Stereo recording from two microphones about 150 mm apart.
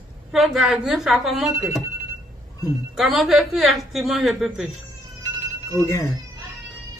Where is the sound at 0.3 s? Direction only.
Centre (ahead or behind).